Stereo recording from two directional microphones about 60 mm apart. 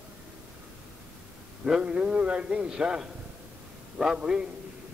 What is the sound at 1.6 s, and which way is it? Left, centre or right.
A man's voice, centre.